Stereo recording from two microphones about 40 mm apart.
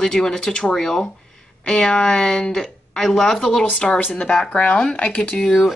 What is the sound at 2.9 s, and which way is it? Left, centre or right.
Speech, centre.